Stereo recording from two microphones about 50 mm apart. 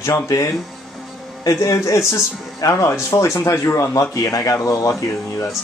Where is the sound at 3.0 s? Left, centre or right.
Left.